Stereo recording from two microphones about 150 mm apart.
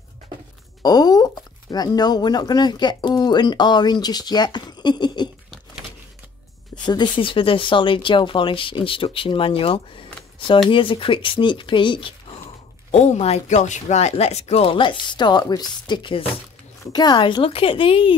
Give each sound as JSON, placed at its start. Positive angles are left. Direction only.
{"t": 0.8, "sound": "speech", "side_deg": 25}
{"t": 6.7, "sound": "speech", "side_deg": 30}
{"t": 12.9, "sound": "speech", "side_deg": 45}